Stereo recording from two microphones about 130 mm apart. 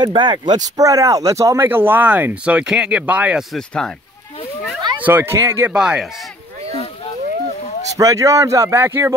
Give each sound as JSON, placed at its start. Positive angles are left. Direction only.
{"t": 0.0, "sound": "speech", "side_deg": -35}
{"t": 3.5, "sound": "speech", "side_deg": 5}
{"t": 5.0, "sound": "speech", "side_deg": -15}
{"t": 5.8, "sound": "speech", "side_deg": -5}
{"t": 7.9, "sound": "a man's voice", "side_deg": -25}